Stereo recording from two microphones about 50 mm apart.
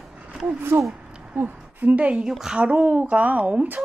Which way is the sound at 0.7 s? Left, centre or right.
Right.